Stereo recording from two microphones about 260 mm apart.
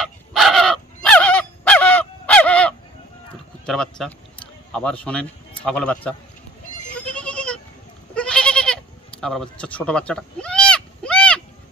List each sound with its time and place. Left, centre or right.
0.0 s honk: centre
3.6 s speech: centre
7.0 s goat: centre